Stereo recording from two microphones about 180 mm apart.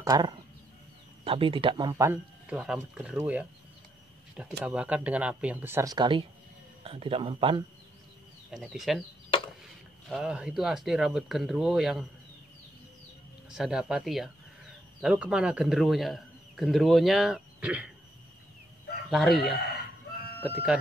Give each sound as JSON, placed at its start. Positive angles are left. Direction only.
{"t": 0.0, "sound": "speech", "side_deg": -20}
{"t": 2.0, "sound": "a man's voice", "side_deg": -5}
{"t": 4.6, "sound": "speech", "side_deg": -5}
{"t": 8.5, "sound": "a man's voice", "side_deg": -5}
{"t": 10.0, "sound": "a man's voice", "side_deg": -5}
{"t": 13.5, "sound": "a man's voice", "side_deg": -5}
{"t": 19.0, "sound": "a man's voice", "side_deg": 0}